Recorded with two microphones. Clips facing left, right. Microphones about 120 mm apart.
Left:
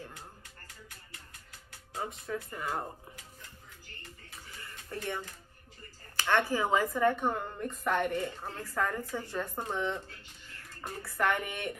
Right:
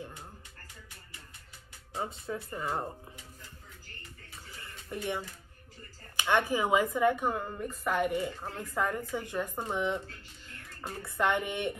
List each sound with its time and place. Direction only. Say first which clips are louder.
2.0 s speech: right 1 dB; 30° right (ahead or behind)
4.9 s a woman's voice: right 2 dB; 15° right (ahead or behind)